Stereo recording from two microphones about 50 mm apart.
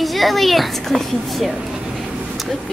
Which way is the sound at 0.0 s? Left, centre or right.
Centre.